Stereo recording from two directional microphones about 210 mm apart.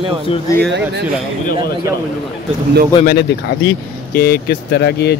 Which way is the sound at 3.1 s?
50° left (ahead or behind).